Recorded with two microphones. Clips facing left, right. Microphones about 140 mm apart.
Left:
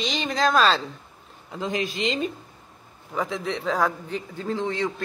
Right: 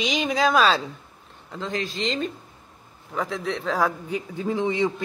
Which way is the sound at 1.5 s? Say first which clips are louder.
Left 2 dB; 15° left (ahead or behind).